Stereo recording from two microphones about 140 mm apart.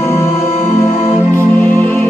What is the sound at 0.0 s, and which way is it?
Music, 15° left (ahead or behind).